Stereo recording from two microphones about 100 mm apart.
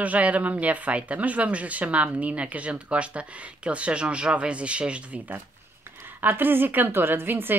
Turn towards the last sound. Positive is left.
turn(degrees=-20)  # may be behind; listen again after turning